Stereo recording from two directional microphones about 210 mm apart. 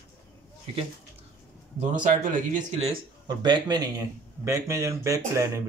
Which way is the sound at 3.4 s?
20° right (ahead or behind).